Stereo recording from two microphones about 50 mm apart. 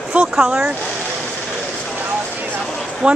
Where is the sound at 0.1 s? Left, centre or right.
Right.